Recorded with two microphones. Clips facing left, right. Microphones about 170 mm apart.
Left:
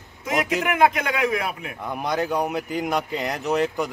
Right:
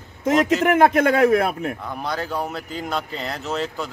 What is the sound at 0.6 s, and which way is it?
A man's voice, 45° right (ahead or behind).